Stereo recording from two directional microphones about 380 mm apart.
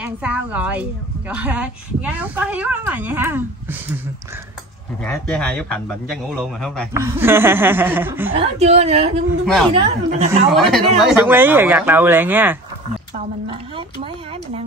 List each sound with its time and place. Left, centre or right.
0.0 s a man's voice: centre
5.0 s a man's voice: centre
10.5 s a man's voice: centre